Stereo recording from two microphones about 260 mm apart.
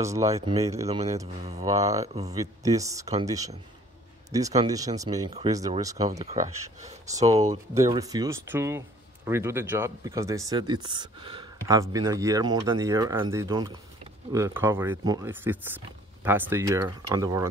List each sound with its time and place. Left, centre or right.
0.0 s speech: centre
0.8 s speech: right
7.2 s speech: right
7.7 s speech: centre